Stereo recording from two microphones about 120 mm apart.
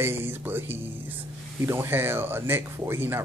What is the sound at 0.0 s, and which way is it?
Speech, 20° right (ahead or behind).